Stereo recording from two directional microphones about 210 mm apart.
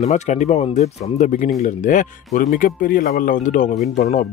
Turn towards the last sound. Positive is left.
turn(degrees=35)  # may be behind; listen again after turning